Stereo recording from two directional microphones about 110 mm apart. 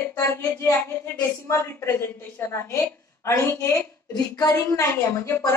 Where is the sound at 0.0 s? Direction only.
25° left (ahead or behind).